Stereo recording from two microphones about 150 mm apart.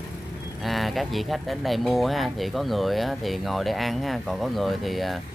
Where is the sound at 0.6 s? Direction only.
Centre (ahead or behind).